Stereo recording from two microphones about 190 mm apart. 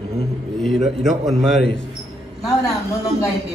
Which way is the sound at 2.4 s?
15° left (ahead or behind).